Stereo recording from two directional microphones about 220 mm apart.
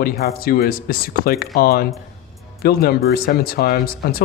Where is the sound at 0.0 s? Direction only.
45° left (ahead or behind).